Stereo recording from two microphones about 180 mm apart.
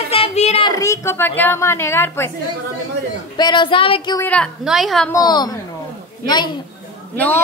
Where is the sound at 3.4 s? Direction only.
25° left (ahead or behind).